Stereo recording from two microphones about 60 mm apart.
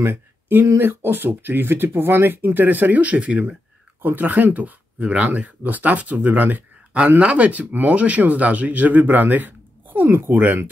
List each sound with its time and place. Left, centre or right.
0.0 s speech: right